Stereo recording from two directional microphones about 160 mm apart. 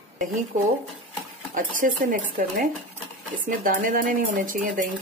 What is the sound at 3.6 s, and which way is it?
Speech, 60° right (ahead or behind).